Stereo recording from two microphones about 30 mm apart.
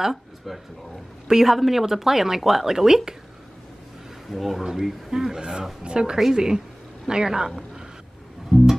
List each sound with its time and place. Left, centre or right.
0.0 s speech: centre
1.2 s speech: right
1.5 s speech: centre
4.3 s speech: centre
5.1 s speech: centre
6.1 s speech: centre
7.1 s a woman's voice: right
8.5 s music: centre